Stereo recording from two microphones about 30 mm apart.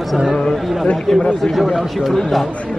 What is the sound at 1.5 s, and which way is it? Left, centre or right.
Speech, centre.